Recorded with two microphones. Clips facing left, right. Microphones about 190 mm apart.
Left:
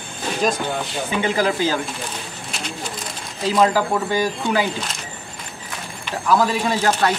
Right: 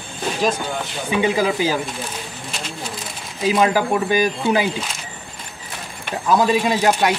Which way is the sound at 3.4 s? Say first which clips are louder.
Even; 15° right (ahead or behind).